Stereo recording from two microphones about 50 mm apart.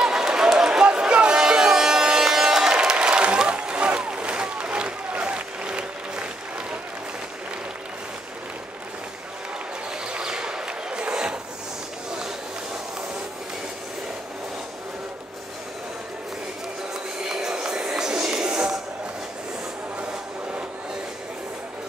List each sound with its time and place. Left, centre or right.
0.0 s run: centre
10.1 s a sound: centre
17.3 s music: centre